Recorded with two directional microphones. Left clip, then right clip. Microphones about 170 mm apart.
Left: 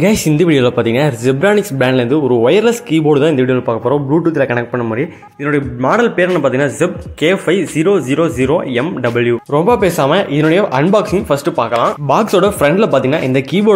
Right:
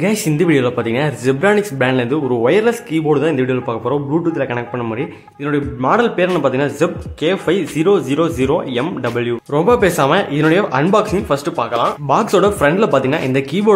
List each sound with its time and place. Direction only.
0.0 s speech: 25° left (ahead or behind)
5.5 s a man's voice: 10° left (ahead or behind)